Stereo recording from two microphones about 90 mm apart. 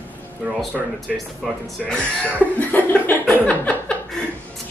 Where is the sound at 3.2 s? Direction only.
15° left (ahead or behind).